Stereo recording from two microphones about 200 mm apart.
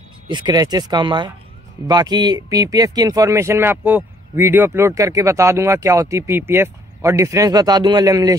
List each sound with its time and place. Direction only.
0.3 s speech: 20° right (ahead or behind)